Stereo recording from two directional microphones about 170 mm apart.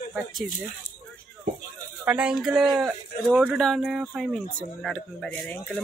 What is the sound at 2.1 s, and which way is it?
Speech, 5° right (ahead or behind).